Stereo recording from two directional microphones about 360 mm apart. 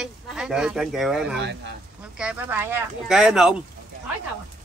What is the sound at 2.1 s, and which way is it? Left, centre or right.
Speech, centre.